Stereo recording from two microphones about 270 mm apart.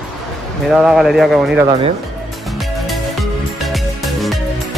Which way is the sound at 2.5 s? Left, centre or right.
Centre.